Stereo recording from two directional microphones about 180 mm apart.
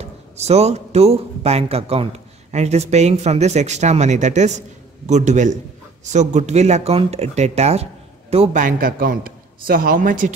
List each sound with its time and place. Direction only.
0.0 s a man's voice: 35° right (ahead or behind)
8.6 s a man's voice: 50° right (ahead or behind)